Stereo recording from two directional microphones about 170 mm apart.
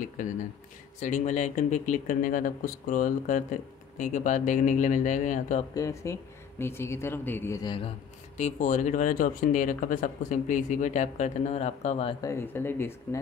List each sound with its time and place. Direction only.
0.2 s speech: 50° left (ahead or behind)
5.8 s speech: 20° left (ahead or behind)
8.4 s speech: 45° left (ahead or behind)
12.2 s speech: 15° left (ahead or behind)